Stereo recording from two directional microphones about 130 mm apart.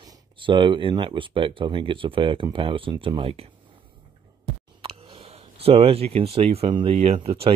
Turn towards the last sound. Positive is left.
turn(degrees=-50)  # may be behind; listen again after turning